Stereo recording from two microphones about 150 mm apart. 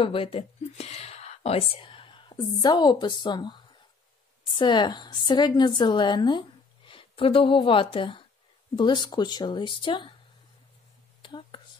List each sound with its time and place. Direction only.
0.0 s a woman's voice: 35° left (ahead or behind)
11.2 s whispering: 35° left (ahead or behind)